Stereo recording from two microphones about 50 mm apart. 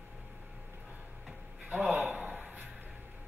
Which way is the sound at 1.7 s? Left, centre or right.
Right.